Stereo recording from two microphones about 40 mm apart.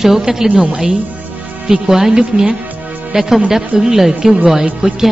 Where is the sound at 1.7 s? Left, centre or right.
Centre.